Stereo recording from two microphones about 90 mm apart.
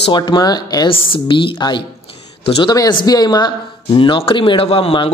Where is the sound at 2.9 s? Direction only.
50° left (ahead or behind); by 5.0 s 90° left.